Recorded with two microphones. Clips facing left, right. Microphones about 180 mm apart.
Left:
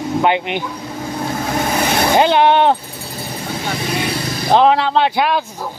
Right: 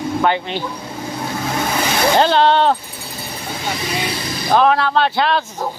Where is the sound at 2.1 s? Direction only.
15° left (ahead or behind).